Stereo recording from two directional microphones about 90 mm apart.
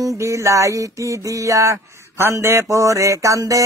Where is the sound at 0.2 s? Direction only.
35° right (ahead or behind).